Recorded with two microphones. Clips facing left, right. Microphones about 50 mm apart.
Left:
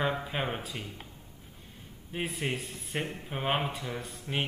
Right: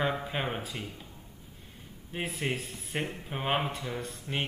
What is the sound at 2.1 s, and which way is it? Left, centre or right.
A man's voice, centre.